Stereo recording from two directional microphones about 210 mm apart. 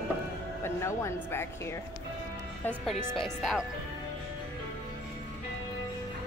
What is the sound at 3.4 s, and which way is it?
Speech, centre (ahead or behind).